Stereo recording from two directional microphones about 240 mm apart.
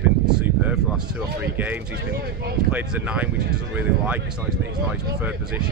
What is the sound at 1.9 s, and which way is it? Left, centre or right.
Speech, right.